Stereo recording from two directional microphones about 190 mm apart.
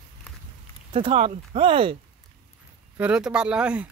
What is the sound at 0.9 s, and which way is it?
Speech, 30° right (ahead or behind).